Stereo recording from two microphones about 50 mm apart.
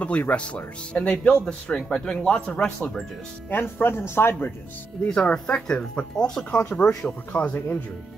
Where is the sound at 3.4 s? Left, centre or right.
Left.